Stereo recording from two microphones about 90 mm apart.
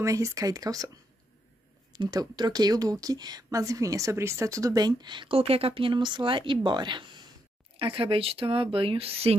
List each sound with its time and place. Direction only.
0.0 s speech: 35° right (ahead or behind)
2.0 s a woman's voice: 50° right (ahead or behind)
7.7 s speech: 80° right